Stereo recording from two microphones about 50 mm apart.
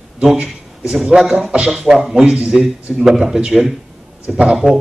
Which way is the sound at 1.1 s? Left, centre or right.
Centre.